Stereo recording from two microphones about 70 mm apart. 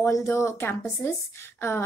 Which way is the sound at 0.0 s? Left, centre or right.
Left.